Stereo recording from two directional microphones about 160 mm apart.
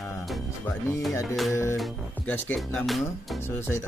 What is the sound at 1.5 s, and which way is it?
Speech, 15° left (ahead or behind).